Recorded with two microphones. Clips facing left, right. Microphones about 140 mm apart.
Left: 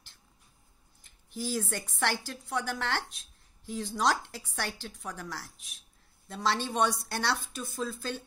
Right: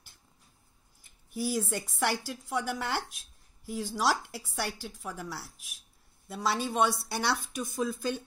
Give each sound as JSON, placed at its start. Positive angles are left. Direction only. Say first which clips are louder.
{"t": 1.0, "sound": "a woman's voice", "louder": "right 3 dB", "side_deg": -10}